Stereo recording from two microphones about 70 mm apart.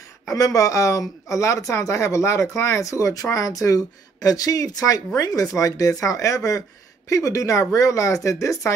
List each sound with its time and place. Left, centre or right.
0.3 s speech: left